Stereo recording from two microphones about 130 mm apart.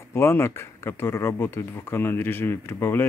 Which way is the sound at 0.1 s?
20° left (ahead or behind).